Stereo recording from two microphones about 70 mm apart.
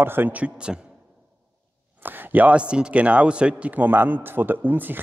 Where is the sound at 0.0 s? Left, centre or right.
Right.